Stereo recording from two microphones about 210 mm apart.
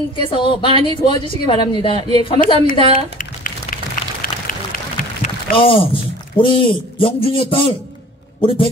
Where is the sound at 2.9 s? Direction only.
40° left (ahead or behind).